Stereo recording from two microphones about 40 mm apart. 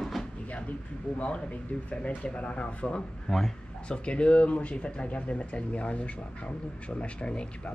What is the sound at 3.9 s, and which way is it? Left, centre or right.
Speech, left.